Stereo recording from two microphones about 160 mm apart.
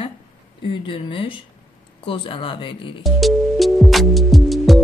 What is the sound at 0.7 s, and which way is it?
A woman's voice, 30° left (ahead or behind).